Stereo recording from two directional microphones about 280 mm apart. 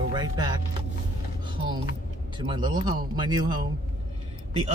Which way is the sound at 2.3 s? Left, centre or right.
Centre.